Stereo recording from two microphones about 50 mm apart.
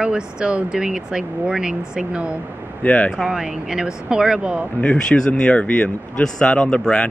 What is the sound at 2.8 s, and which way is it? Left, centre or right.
Speech, left.